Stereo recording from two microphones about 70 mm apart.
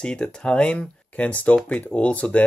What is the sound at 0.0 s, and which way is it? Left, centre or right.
Speech, centre.